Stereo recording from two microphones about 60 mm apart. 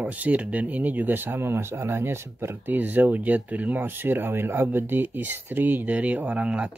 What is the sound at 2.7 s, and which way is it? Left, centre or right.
Speech, right.